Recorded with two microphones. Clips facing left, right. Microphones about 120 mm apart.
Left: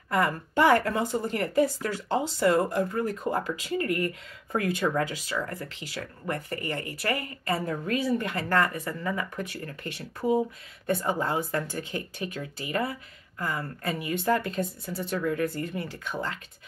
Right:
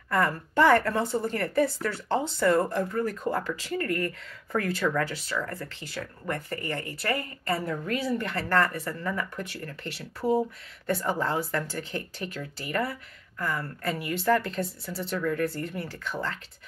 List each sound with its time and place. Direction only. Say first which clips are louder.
0.1 s speech: even; 15° left (ahead or behind)
3.3 s a woman's voice: even; 35° left (ahead or behind)
3.5 s speech: left 1 dB; 15° left (ahead or behind)
6.5 s speech: even; 35° right (ahead or behind)
7.1 s speech: even; 15° left (ahead or behind)
7.6 s a woman's voice: left 1 dB; 35° left (ahead or behind)
7.9 s speech: left 2 dB; 15° left (ahead or behind)